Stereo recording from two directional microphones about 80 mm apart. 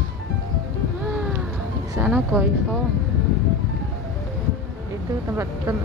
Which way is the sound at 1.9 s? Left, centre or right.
Centre.